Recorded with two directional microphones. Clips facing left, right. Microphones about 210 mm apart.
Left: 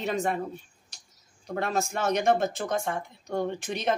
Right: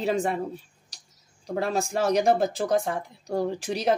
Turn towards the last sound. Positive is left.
turn(degrees=-35)  # may be behind; listen again after turning